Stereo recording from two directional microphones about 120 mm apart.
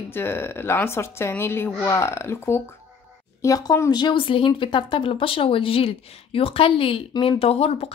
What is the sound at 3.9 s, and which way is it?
Speech, 40° left (ahead or behind).